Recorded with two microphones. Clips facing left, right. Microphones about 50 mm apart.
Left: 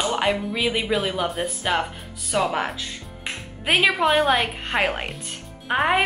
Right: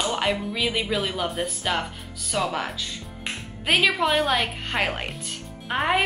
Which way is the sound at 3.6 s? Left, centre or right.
Centre.